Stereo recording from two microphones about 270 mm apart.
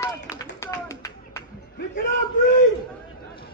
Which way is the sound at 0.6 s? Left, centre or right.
Centre.